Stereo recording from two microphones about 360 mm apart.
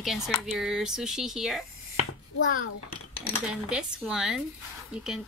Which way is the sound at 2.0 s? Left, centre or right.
Left.